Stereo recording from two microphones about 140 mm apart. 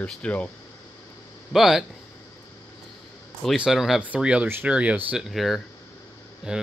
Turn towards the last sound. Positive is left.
turn(degrees=-5)  # may be behind; listen again after turning